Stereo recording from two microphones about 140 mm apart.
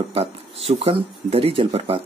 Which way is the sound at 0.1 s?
45° right (ahead or behind).